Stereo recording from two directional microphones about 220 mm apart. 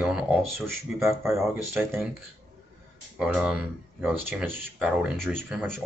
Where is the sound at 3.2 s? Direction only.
5° right (ahead or behind).